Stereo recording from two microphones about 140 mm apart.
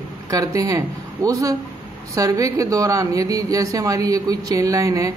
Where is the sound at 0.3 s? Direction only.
25° right (ahead or behind).